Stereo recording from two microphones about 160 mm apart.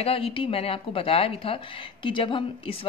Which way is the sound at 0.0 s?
35° left (ahead or behind).